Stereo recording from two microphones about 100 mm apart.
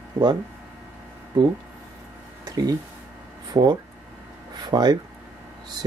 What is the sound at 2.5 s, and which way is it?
Speech, 40° right (ahead or behind).